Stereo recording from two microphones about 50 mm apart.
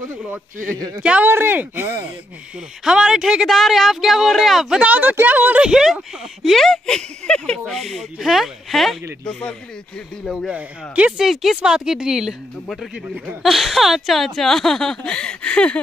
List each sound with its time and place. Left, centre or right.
1.2 s speech: right
2.8 s speech: centre
3.4 s speech: centre
4.8 s speech: right
5.6 s speech: centre
6.4 s speech: centre
6.7 s speech: centre
9.2 s speech: centre
10.5 s speech: right
11.1 s speech: centre
13.4 s speech: centre